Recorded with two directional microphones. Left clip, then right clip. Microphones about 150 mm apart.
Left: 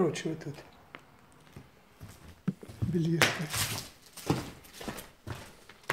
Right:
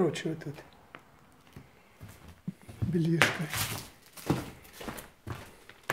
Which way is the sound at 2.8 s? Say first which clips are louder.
Right 1 dB; 20° right (ahead or behind).